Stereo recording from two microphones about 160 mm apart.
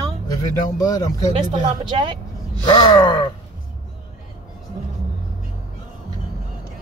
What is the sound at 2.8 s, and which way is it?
Speech, 30° left (ahead or behind).